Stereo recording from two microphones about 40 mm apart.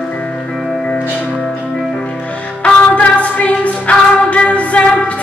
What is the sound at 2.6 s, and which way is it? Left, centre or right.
Music, left.